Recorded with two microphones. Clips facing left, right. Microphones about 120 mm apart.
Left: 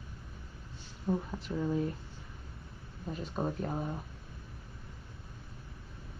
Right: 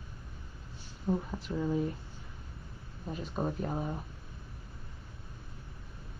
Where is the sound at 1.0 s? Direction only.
Centre (ahead or behind).